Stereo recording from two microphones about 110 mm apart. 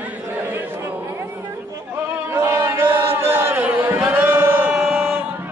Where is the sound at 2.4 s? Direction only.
25° right (ahead or behind).